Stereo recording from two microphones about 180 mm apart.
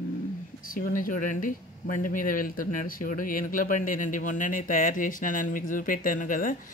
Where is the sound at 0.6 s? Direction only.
50° left (ahead or behind).